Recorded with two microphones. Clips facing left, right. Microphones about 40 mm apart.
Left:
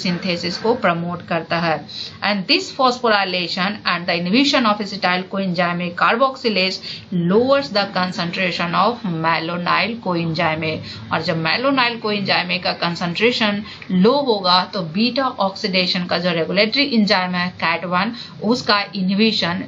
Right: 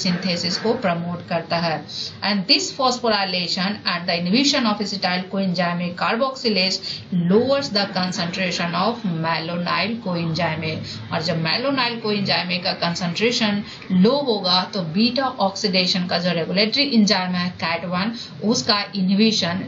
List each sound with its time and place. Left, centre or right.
0.2 s a woman's voice: left
9.0 s speech: left
9.3 s a woman's voice: left
14.3 s a woman's voice: left